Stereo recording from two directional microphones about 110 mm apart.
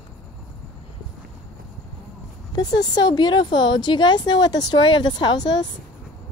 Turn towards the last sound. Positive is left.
turn(degrees=40)  # may be behind; listen again after turning